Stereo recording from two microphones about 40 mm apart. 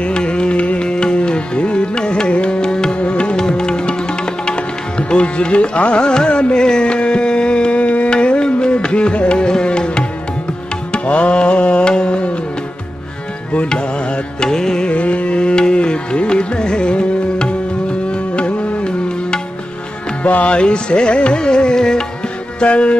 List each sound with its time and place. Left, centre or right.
0.0 s music: left
3.3 s music: centre
13.7 s music: left
14.9 s music: left
20.2 s speech: left
20.5 s music: left
22.6 s music: left